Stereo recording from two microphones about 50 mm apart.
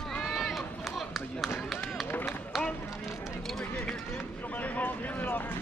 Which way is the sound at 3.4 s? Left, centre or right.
Centre.